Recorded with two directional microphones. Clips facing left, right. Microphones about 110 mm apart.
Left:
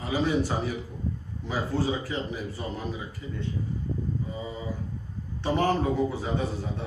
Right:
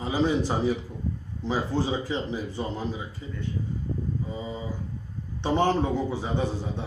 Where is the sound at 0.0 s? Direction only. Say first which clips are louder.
Right 2 dB; 30° right (ahead or behind).